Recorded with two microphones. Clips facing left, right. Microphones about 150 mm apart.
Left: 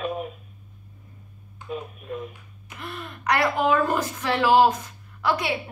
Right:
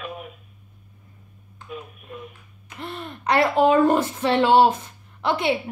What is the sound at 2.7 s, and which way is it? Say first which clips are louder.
Speech: right 3 dB; 30° right (ahead or behind).